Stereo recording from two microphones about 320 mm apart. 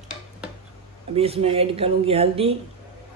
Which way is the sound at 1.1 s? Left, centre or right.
Centre.